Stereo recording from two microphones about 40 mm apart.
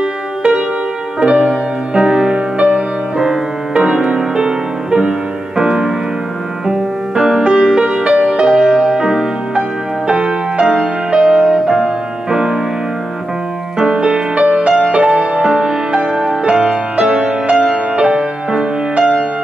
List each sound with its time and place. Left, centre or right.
1.2 s music: right
10.6 s music: centre
13.7 s music: right